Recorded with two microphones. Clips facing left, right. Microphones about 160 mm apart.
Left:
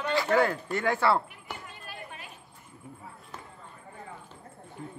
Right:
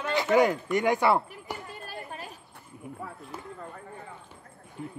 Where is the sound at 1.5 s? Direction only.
35° right (ahead or behind).